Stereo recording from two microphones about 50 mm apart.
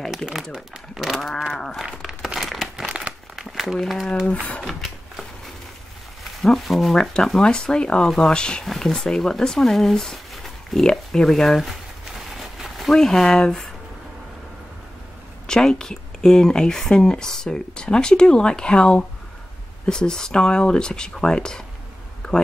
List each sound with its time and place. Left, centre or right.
0.6 s speech: centre
1.5 s speech: centre
2.0 s crumpling: centre
2.8 s crumpling: centre
3.3 s a sound: centre
4.3 s speech: left
4.6 s speech: centre
6.4 s speech: centre
7.4 s speech: centre
8.6 s speech: centre
12.4 s a sound: centre
12.9 s speech: centre
15.4 s speech: centre
22.2 s a sound: centre